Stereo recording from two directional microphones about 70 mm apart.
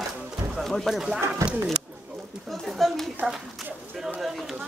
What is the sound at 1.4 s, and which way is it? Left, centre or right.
Speech, right.